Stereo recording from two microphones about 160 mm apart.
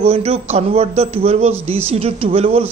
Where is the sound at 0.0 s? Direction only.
40° right (ahead or behind).